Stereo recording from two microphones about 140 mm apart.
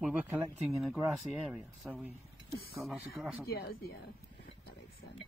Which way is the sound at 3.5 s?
90° left.